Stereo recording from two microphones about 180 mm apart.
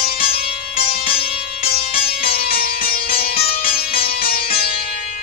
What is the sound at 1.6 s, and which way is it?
Music, 30° left (ahead or behind).